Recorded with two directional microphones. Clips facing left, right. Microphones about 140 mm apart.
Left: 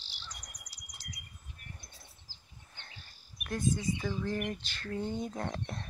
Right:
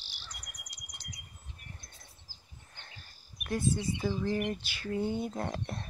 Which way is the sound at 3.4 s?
5° right (ahead or behind).